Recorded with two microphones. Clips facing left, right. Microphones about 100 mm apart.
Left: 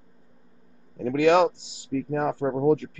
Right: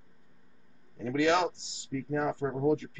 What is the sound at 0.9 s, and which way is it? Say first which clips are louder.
A man's voice: left 7 dB; 55° left (ahead or behind).